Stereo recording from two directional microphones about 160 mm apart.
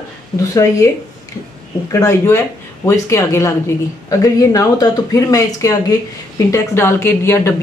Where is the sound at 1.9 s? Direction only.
15° left (ahead or behind).